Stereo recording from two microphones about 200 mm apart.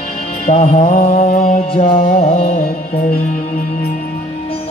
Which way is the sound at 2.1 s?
35° left (ahead or behind).